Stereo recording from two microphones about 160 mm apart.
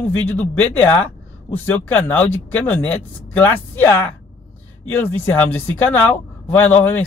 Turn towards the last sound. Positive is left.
turn(degrees=10)  # may be behind; listen again after turning